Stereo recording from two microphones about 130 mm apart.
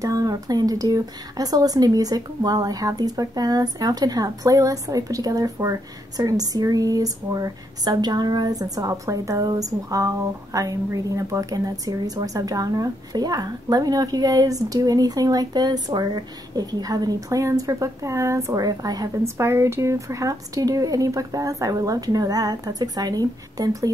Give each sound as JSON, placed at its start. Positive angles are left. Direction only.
{"t": 0.0, "sound": "speech", "side_deg": -25}